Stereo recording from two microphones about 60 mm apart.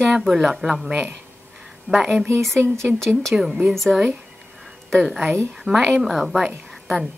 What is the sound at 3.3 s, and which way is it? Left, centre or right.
Speech, centre.